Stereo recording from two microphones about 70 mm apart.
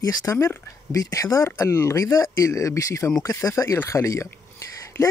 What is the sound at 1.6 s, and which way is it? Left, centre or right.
Speech, left.